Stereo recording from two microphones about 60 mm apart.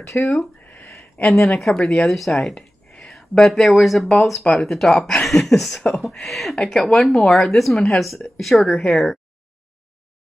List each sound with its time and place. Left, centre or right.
0.1 s speech: left
1.3 s speech: centre